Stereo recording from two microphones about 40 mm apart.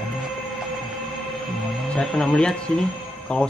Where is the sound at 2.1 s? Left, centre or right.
Centre.